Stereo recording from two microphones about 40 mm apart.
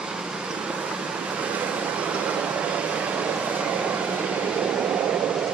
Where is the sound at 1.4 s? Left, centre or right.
Right.